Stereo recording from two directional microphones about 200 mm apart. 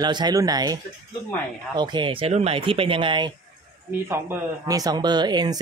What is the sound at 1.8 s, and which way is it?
Speech, 20° right (ahead or behind).